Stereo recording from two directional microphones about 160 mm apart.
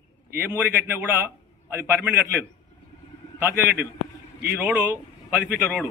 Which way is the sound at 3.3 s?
15° right (ahead or behind).